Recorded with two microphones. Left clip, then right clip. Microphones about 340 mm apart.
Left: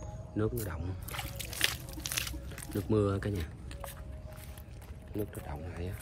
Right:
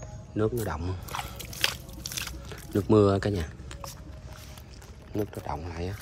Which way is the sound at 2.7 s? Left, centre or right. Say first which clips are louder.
Right 9 dB; centre.